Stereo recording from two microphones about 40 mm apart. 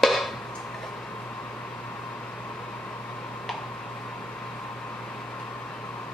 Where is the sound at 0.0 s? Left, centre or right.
Centre.